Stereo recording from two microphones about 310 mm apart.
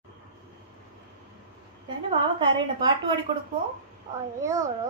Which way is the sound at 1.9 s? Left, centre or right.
Centre.